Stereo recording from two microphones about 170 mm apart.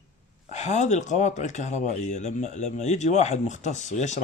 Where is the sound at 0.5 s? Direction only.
45° left (ahead or behind).